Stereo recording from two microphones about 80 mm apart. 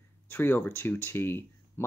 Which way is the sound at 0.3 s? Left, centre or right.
Left.